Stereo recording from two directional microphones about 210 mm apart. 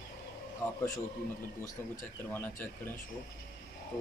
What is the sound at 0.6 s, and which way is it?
Speech, 10° left (ahead or behind).